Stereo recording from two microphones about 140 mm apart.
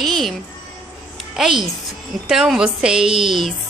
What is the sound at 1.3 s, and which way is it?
A woman's voice, centre (ahead or behind).